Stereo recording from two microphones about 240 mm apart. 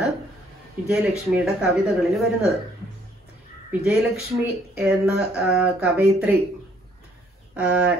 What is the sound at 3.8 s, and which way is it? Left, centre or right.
Speech, centre.